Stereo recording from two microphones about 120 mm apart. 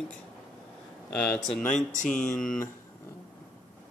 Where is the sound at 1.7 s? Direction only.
90° left.